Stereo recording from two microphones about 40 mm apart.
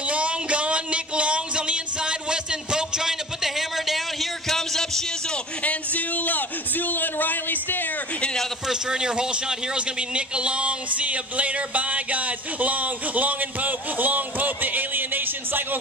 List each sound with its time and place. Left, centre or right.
0.0 s music: right; by 5.0 s centre
5.6 s a man's voice: left
8.6 s a man's voice: centre; by 15.8 s right